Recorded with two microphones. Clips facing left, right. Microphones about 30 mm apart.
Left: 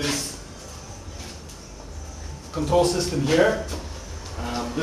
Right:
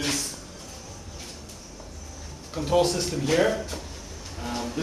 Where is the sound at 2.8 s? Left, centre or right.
Centre.